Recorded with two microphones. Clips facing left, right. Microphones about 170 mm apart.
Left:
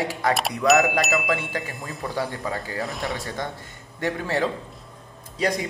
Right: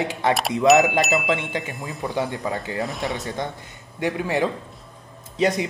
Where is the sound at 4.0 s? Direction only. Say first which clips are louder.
Right 2 dB; 15° right (ahead or behind).